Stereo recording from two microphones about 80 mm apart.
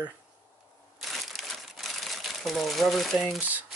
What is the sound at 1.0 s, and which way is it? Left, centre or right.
Crumpling, centre.